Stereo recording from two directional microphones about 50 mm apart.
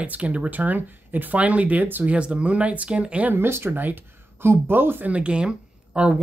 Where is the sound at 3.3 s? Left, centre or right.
Right.